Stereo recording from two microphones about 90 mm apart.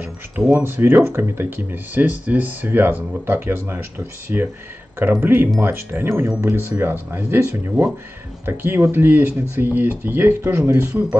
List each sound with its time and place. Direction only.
0.5 s speech: 20° right (ahead or behind)